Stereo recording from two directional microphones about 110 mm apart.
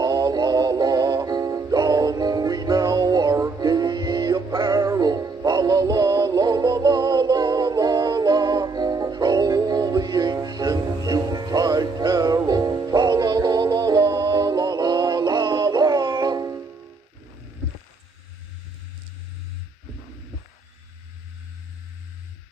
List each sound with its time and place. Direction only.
0.0 s music: 35° right (ahead or behind)